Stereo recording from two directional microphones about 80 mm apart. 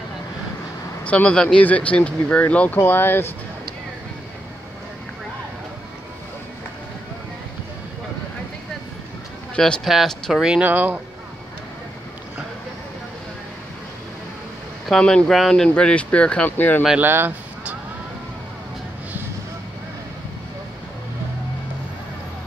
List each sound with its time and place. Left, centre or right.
1.0 s speech: centre
9.6 s speech: centre
10.6 s speech: right
14.9 s speech: centre
17.0 s speech: right